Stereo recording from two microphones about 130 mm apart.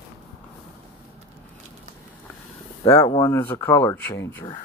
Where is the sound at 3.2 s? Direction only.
20° left (ahead or behind).